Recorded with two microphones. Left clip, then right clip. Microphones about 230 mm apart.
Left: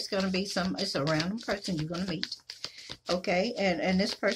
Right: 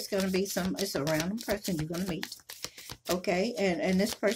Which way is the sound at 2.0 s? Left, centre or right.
Right.